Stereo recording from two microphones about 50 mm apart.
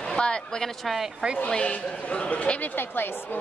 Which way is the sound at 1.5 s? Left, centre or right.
Left.